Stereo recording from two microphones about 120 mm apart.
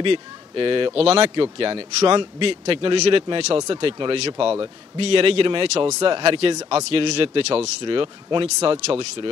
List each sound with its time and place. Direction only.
0.0 s a man's voice: 45° right (ahead or behind)
3.5 s a man's voice: 40° right (ahead or behind); by 7.7 s 60° right (ahead or behind)
7.8 s a man's voice: 45° right (ahead or behind)